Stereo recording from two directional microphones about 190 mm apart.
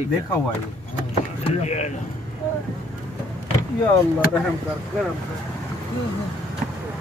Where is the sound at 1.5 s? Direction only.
35° left (ahead or behind).